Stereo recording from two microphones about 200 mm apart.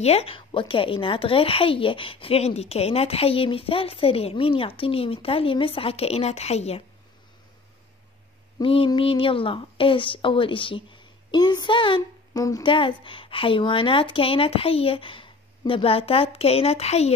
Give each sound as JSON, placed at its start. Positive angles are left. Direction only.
{"t": 0.0, "sound": "speech", "side_deg": 30}
{"t": 8.5, "sound": "speech", "side_deg": 25}